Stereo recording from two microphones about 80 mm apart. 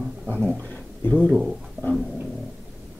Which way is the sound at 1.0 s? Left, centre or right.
Left.